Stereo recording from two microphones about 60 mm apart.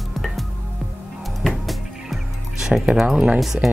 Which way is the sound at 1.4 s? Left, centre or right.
Centre.